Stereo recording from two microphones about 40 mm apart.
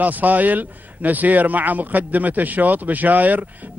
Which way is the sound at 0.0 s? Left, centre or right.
Right.